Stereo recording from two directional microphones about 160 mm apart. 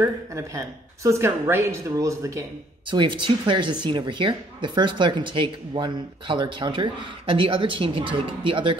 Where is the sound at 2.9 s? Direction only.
30° right (ahead or behind).